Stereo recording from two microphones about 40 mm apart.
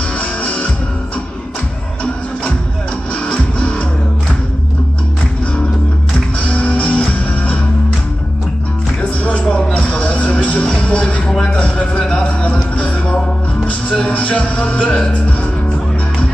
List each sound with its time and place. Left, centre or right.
0.2 s music: left
3.3 s music: left
6.4 s music: left
9.2 s music: left
9.8 s music: left
11.2 s music: centre
12.0 s a sound: left
12.7 s music: left